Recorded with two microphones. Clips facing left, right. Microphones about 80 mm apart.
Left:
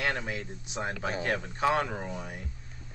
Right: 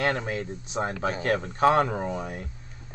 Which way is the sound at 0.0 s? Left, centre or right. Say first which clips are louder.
Right 5 dB; right.